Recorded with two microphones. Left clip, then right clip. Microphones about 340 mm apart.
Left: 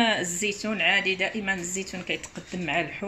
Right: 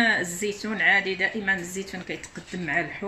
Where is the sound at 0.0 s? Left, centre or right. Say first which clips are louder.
Right 1 dB; centre.